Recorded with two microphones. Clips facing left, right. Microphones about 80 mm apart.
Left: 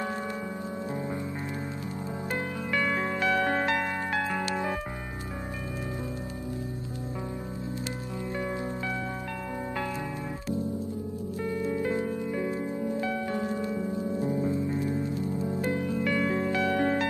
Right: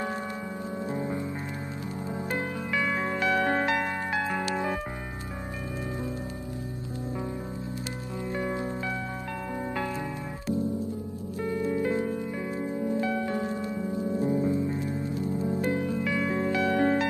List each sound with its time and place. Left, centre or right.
2.7 s music: centre
11.4 s music: right
13.3 s music: right
16.0 s music: centre
16.4 s music: right